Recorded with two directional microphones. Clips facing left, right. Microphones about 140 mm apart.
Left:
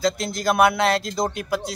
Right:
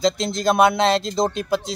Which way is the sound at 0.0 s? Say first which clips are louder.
Right 3 dB; 20° right (ahead or behind).